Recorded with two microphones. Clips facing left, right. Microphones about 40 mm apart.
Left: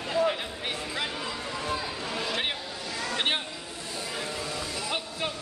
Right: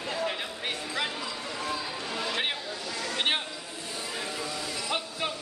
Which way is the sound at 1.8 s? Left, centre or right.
Centre.